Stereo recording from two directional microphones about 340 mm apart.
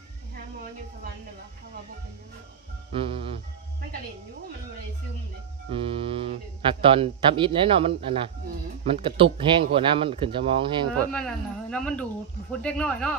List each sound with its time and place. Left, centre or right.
2.9 s speech: centre
5.7 s speech: centre
11.1 s speech: centre